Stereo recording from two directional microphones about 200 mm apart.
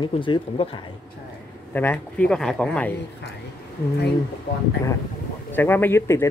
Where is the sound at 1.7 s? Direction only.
10° left (ahead or behind).